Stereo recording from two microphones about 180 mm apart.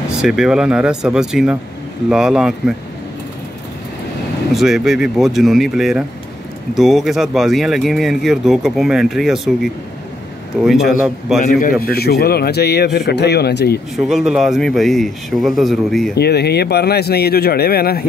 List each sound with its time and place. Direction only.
0.2 s speech: 5° right (ahead or behind)
4.6 s speech: centre (ahead or behind)
11.8 s speech: 60° left (ahead or behind)
13.9 s speech: centre (ahead or behind)
16.2 s speech: 65° left (ahead or behind)